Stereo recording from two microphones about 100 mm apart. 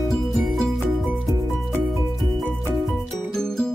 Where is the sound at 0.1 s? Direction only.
Centre (ahead or behind).